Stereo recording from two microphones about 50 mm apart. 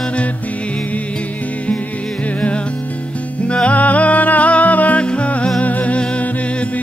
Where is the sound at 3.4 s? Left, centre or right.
Left.